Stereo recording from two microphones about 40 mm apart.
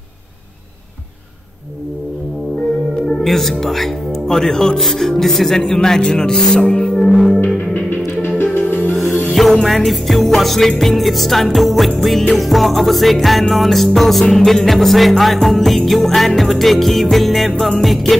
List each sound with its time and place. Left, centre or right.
3.3 s speech: centre
4.7 s music: centre
5.6 s speech: centre
7.0 s music: centre
7.7 s music: left
9.3 s music: centre